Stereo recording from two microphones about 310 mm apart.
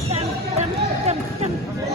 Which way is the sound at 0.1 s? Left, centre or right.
Right.